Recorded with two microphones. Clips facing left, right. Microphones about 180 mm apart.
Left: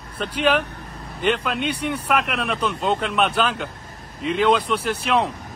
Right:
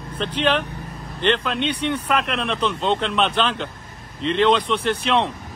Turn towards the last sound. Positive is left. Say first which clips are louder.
# right 1 dB
turn(degrees=5)  # may be behind; listen again after turning